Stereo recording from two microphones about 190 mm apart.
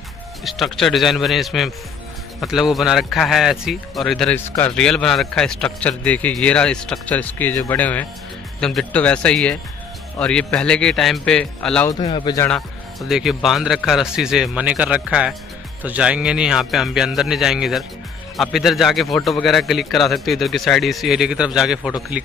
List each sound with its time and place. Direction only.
0.4 s a man's voice: centre (ahead or behind)
11.9 s speech: 20° left (ahead or behind)
13.1 s a man's voice: centre (ahead or behind)